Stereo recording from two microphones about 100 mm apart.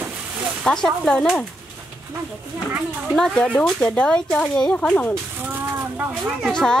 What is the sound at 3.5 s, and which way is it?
Speech, 10° left (ahead or behind).